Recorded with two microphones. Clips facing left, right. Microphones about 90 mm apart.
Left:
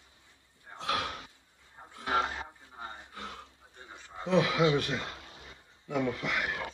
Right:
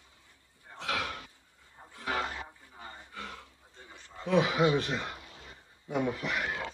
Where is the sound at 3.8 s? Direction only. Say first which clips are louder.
Left 2 dB; 20° left (ahead or behind).